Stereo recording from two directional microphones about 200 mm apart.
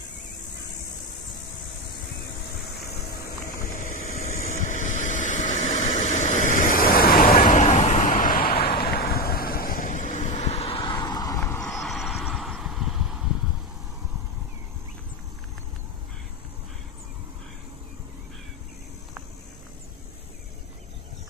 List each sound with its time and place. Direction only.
3.1 s vehicle: 50° left (ahead or behind)
5.8 s vehicle: 20° left (ahead or behind)
6.0 s vehicle: 35° left (ahead or behind); by 11.7 s 10° left (ahead or behind)
11.7 s vehicle: centre (ahead or behind)